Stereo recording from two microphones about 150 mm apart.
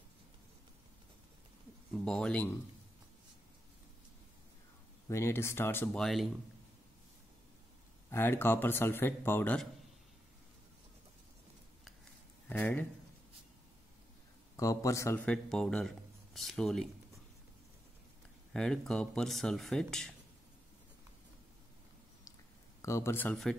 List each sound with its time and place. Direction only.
2.0 s speech: 5° left (ahead or behind)
5.0 s speech: 20° left (ahead or behind)
5.9 s speech: centre (ahead or behind)
8.1 s speech: 15° left (ahead or behind)
12.4 s speech: 10° left (ahead or behind)
14.6 s a man's voice: 20° left (ahead or behind)
15.2 s speech: 5° left (ahead or behind)
18.5 s speech: 5° left (ahead or behind)
22.8 s speech: 20° left (ahead or behind)